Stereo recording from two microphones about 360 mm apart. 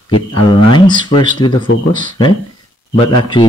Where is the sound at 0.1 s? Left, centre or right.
Centre.